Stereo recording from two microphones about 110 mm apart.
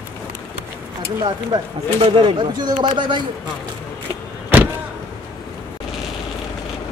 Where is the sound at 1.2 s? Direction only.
50° right (ahead or behind).